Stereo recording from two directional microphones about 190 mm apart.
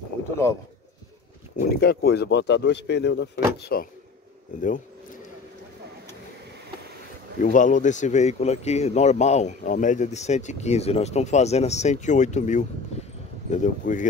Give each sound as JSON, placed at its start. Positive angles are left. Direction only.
{"t": 1.7, "sound": "speech", "side_deg": 55}
{"t": 4.6, "sound": "speech", "side_deg": 45}
{"t": 7.4, "sound": "speech", "side_deg": 40}